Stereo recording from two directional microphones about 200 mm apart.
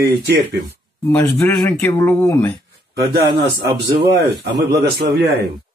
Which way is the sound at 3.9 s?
60° right (ahead or behind).